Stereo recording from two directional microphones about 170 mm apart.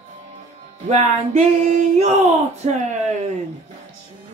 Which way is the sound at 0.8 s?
40° right (ahead or behind).